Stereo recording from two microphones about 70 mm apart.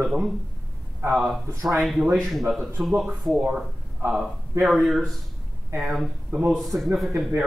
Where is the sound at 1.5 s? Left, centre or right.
Right.